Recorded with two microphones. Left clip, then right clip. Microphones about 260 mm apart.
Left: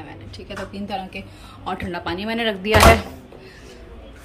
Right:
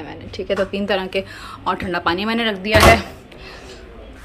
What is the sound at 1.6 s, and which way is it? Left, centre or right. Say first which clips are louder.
Speech: right 7 dB; centre.